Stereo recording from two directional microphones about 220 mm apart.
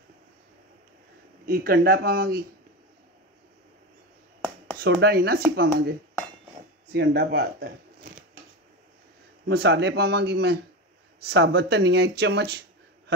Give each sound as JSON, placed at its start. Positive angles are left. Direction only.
{"t": 1.5, "sound": "speech", "side_deg": -45}
{"t": 4.7, "sound": "speech", "side_deg": -45}
{"t": 9.5, "sound": "speech", "side_deg": -50}